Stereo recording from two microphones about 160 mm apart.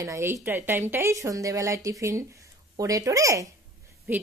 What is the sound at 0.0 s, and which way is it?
Speech, 15° right (ahead or behind).